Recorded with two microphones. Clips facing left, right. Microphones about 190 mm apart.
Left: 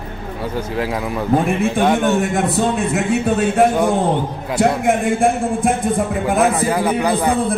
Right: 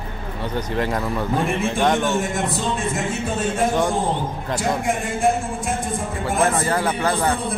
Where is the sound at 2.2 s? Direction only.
60° left (ahead or behind).